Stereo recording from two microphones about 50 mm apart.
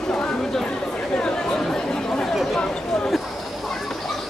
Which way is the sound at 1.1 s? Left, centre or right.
Centre.